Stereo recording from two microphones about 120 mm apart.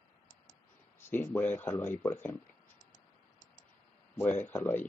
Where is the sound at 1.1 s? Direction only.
15° left (ahead or behind).